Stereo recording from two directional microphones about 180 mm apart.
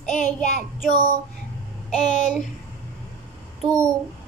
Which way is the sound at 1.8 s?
Centre (ahead or behind).